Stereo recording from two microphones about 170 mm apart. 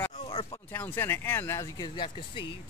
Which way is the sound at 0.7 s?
10° left (ahead or behind).